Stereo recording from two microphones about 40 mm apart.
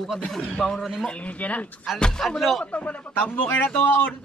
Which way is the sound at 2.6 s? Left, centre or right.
Left.